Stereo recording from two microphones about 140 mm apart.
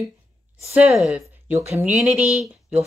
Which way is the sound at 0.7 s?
5° right (ahead or behind).